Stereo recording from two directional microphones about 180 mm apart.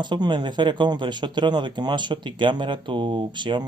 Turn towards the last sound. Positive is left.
turn(degrees=-25)  # may be behind; listen again after turning